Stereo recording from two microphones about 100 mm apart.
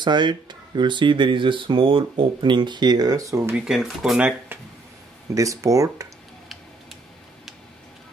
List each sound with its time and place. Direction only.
0.0 s speech: 50° right (ahead or behind); by 3.5 s 30° right (ahead or behind)
3.6 s speech: 5° right (ahead or behind)
5.3 s speech: 35° right (ahead or behind)